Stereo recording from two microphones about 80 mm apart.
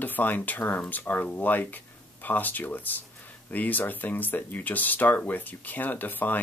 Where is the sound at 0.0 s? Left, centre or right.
Left.